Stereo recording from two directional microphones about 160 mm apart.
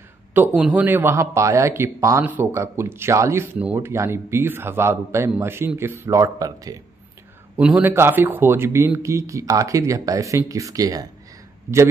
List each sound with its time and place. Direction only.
0.3 s a man's voice: 10° right (ahead or behind)
7.5 s speech: 10° right (ahead or behind)